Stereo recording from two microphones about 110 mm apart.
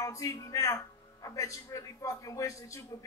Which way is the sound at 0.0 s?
30° left (ahead or behind).